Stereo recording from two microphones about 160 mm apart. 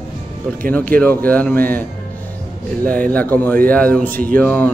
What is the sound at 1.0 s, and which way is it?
Speech, 10° left (ahead or behind).